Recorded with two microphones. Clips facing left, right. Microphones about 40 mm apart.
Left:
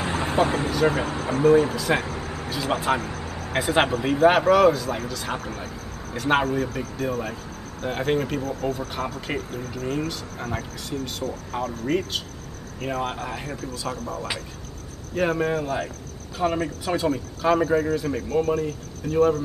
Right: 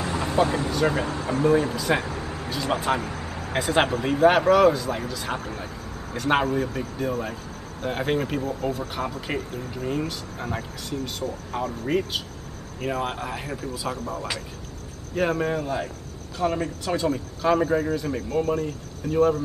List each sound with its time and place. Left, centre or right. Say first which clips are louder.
0.0 s vehicle: left 1 dB; left
0.7 s speech: left 1 dB; centre
3.5 s speech: left 1 dB; centre